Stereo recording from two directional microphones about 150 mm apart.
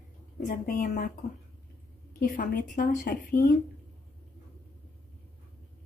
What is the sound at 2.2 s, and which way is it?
A woman's voice, 65° left (ahead or behind).